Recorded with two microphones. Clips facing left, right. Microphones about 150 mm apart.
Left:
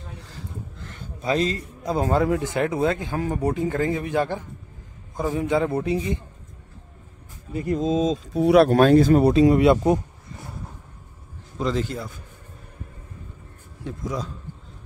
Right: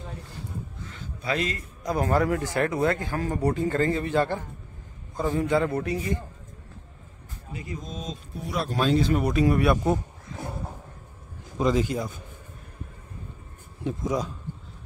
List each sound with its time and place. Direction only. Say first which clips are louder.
1.2 s a man's voice: left 5 dB; 35° left (ahead or behind)
7.5 s speech: left 14 dB; 60° left (ahead or behind); by 9.3 s 40° left (ahead or behind)
9.3 s a man's voice: left 6 dB; 25° left (ahead or behind)
11.5 s speech: right 2 dB; 15° right (ahead or behind)
13.8 s speech: right 3 dB; 20° right (ahead or behind)